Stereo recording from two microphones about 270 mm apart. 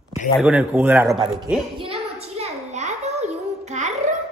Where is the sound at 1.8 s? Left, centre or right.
Right.